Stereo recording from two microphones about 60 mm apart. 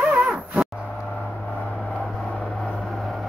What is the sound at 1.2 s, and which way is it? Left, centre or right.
Vehicle, left.